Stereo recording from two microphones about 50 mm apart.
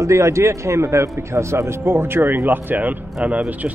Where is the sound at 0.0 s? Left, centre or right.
Right.